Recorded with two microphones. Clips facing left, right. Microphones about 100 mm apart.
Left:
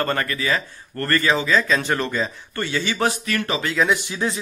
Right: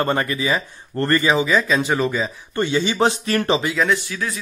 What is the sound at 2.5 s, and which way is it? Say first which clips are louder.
Speech: right 7 dB; 20° right (ahead or behind).